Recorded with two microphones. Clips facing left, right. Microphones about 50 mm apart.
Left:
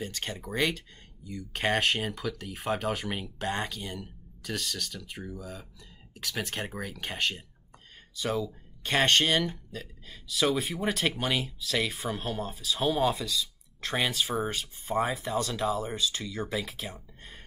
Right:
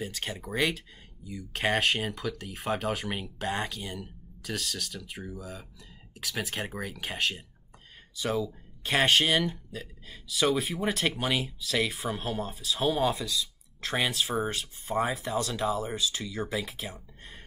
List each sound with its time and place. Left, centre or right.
0.0 s speech: centre